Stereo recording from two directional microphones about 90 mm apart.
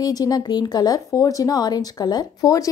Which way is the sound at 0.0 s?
45° left (ahead or behind).